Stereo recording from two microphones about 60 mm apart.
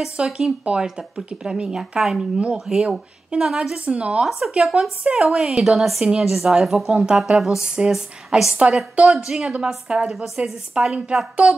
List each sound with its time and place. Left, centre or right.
0.0 s speech: centre
4.3 s speech: centre